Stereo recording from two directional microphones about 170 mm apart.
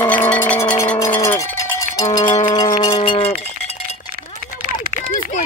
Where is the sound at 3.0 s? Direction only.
35° left (ahead or behind).